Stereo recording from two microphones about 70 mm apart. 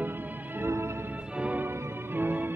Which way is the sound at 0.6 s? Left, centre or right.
Right.